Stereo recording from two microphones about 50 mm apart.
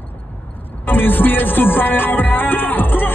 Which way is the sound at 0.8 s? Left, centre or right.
Left.